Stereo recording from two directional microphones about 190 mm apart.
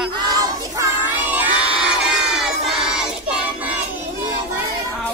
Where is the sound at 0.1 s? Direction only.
20° right (ahead or behind).